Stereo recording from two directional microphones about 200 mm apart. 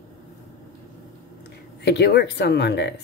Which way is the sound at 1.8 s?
55° left (ahead or behind).